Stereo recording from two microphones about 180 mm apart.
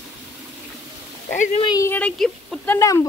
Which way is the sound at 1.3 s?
45° left (ahead or behind).